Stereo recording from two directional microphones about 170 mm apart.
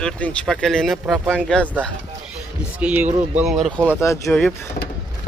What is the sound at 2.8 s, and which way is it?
Speech, 10° right (ahead or behind).